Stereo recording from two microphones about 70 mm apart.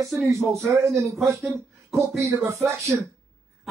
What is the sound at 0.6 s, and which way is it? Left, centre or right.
A man's voice, right.